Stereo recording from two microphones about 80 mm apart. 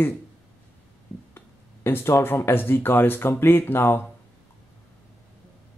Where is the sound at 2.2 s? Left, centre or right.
Left.